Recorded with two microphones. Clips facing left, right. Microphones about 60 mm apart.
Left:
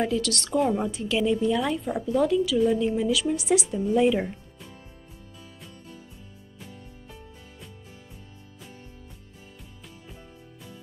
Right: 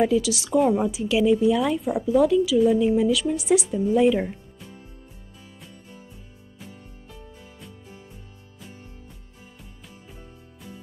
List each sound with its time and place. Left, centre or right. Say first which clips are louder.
0.0 s a woman's voice: right 5 dB; centre